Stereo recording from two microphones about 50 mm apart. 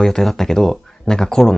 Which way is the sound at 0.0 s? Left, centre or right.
Centre.